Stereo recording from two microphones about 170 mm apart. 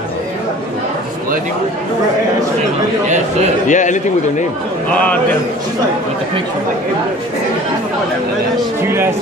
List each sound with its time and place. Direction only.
3.6 s a man's voice: 45° left (ahead or behind)